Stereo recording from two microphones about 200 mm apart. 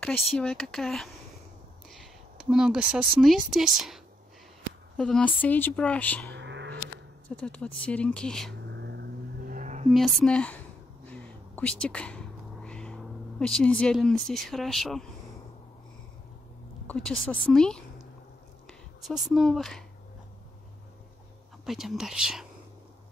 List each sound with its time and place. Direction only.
0.0 s a woman's voice: 5° left (ahead or behind)
6.3 s a sound: 65° right (ahead or behind)
7.2 s speech: 5° left (ahead or behind)
8.6 s vehicle: 60° right (ahead or behind); by 9.9 s 40° right (ahead or behind)
9.9 s speech: centre (ahead or behind)
11.1 s a sound: 5° left (ahead or behind)
16.8 s speech: 5° left (ahead or behind)
21.6 s speech: centre (ahead or behind)